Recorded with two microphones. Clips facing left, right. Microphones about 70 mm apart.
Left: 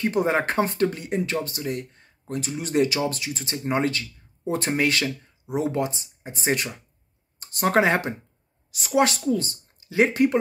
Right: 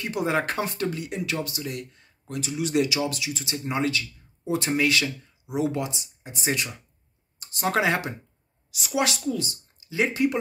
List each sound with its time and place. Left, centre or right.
0.0 s speech: left